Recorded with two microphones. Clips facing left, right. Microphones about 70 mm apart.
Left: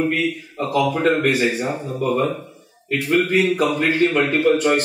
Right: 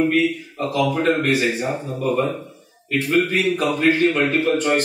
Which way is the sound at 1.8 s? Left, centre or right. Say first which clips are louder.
Left 3 dB; left.